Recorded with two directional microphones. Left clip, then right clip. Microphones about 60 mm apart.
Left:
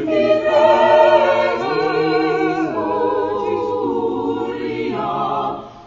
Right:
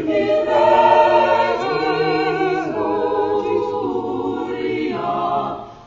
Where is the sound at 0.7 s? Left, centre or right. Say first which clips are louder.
Left 1 dB; right.